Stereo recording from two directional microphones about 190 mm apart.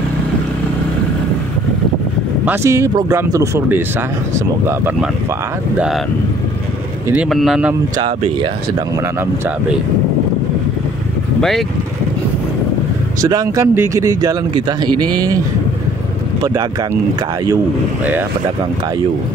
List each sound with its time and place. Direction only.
2.4 s speech: 10° right (ahead or behind)
7.2 s speech: centre (ahead or behind)
13.2 s speech: 20° right (ahead or behind)